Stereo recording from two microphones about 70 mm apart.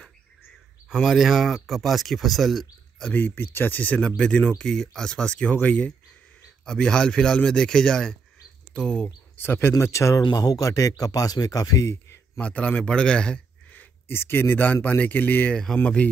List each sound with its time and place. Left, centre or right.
0.9 s speech: centre
3.1 s speech: left; by 9.1 s centre
9.4 s speech: left
12.4 s a man's voice: centre
14.1 s speech: left; by 16.1 s centre